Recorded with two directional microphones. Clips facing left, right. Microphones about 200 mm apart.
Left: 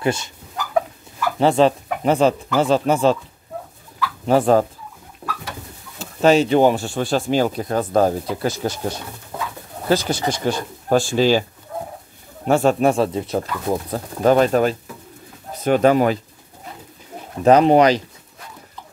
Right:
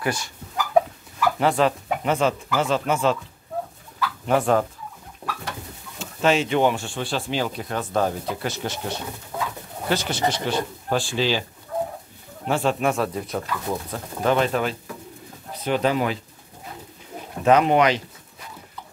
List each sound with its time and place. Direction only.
0.0 s speech: 25° left (ahead or behind)
1.4 s speech: 30° left (ahead or behind)
4.3 s speech: 35° left (ahead or behind)
5.2 s bird: 10° right (ahead or behind)
5.9 s speech: 40° left (ahead or behind)
9.8 s speech: 40° left (ahead or behind)
12.4 s speech: 45° left (ahead or behind)
12.9 s speech: 30° left (ahead or behind)
13.7 s speech: 40° left (ahead or behind)
17.5 s speech: 35° left (ahead or behind)